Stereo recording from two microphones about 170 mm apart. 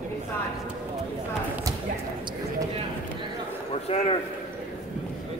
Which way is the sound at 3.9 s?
40° left (ahead or behind).